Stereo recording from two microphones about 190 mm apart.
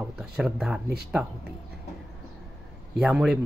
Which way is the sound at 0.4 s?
5° right (ahead or behind).